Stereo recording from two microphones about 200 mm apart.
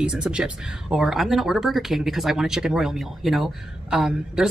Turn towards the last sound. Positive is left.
turn(degrees=0)  # may be behind; listen again after turning